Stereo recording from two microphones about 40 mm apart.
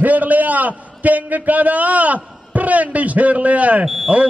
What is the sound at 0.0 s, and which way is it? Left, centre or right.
A man's voice, right.